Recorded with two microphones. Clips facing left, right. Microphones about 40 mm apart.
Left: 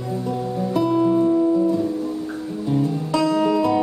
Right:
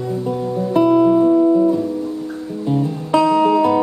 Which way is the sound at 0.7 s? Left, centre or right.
Right.